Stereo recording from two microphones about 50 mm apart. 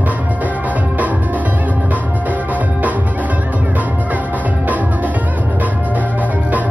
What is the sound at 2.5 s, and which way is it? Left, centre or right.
Music, right.